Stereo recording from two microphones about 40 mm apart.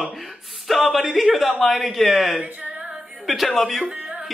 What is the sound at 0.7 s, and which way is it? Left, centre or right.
Speech, centre.